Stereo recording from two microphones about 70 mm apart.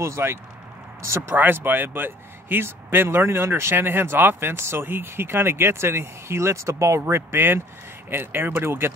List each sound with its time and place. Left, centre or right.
0.0 s speech: right
1.3 s speech: right